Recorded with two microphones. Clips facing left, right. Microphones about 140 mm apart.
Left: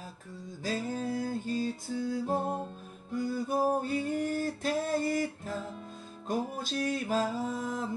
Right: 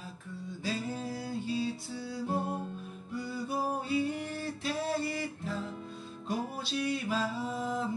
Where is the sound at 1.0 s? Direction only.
45° left (ahead or behind).